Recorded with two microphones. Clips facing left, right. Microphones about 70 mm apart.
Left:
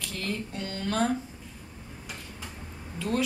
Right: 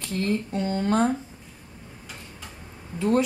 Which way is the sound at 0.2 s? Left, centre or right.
Right.